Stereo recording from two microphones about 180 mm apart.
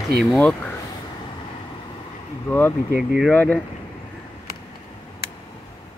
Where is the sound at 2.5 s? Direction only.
10° left (ahead or behind).